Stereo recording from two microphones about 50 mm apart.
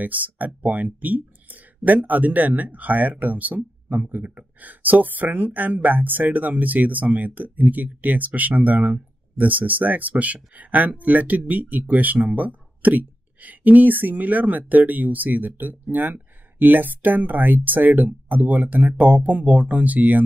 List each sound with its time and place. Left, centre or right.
0.0 s speech: right